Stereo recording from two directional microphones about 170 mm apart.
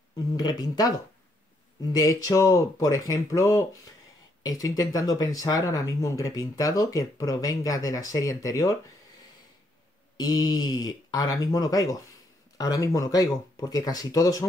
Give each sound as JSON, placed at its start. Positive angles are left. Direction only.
{"t": 0.4, "sound": "speech", "side_deg": 20}
{"t": 10.1, "sound": "speech", "side_deg": 25}